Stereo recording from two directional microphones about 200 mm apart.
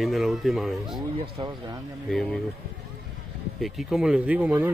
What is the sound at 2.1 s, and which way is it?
Speech, centre (ahead or behind).